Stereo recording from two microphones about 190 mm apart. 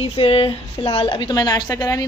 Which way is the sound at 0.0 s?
30° left (ahead or behind).